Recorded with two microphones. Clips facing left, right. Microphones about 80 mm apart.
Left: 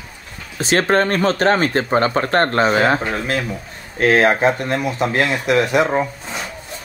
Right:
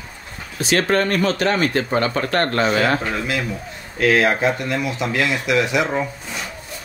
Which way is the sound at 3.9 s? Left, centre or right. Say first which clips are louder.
Left 2 dB; left.